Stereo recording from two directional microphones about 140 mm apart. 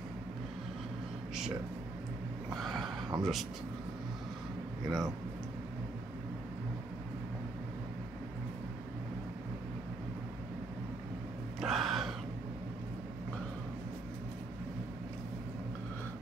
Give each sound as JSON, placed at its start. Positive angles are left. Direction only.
{"t": 2.5, "sound": "a sound", "side_deg": 0}
{"t": 3.2, "sound": "speech", "side_deg": 0}
{"t": 4.8, "sound": "speech", "side_deg": -25}
{"t": 11.6, "sound": "gasp", "side_deg": 0}